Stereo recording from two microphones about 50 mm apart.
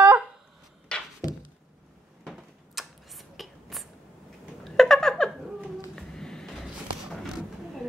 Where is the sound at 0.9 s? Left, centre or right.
Left.